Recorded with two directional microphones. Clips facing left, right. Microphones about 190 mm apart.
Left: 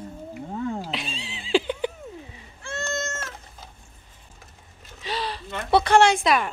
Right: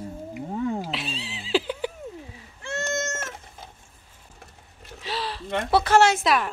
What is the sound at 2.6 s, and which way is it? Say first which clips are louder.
Cat: right 2 dB; 20° right (ahead or behind).